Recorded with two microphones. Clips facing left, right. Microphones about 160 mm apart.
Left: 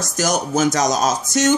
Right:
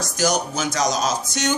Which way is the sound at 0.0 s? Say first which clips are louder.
Left 1 dB; 45° left (ahead or behind).